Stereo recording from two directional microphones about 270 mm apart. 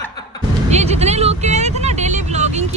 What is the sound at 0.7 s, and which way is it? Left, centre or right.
Speech, right.